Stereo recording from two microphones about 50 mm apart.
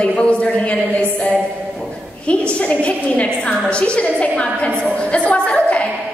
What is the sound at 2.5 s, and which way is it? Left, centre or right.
A woman's voice, left.